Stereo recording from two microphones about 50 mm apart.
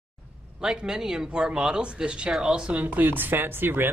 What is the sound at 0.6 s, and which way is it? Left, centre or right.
Speech, centre.